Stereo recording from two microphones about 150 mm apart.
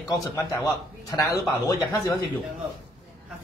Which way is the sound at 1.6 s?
20° left (ahead or behind).